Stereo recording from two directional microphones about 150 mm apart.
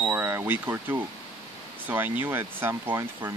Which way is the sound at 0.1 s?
15° right (ahead or behind).